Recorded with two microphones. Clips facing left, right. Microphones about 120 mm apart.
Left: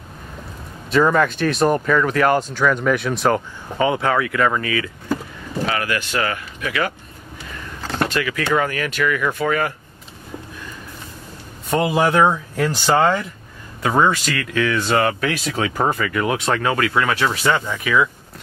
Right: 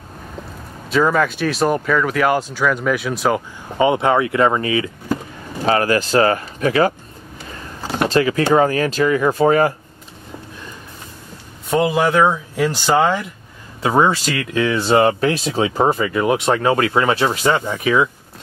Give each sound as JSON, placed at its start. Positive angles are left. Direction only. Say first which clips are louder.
{"t": 0.8, "sound": "speech", "louder": "even", "side_deg": 0}
{"t": 3.7, "sound": "speech", "louder": "right 3 dB", "side_deg": -20}
{"t": 5.7, "sound": "speech", "louder": "right 9 dB", "side_deg": -35}
{"t": 7.8, "sound": "door", "louder": "right 2 dB", "side_deg": -10}
{"t": 8.1, "sound": "speech", "louder": "right 8 dB", "side_deg": -30}
{"t": 11.7, "sound": "speech", "louder": "right 1 dB", "side_deg": 0}